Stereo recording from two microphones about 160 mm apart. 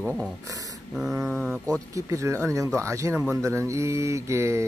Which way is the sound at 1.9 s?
20° right (ahead or behind).